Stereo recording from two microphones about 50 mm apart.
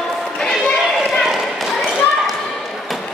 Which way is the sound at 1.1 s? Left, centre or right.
Centre.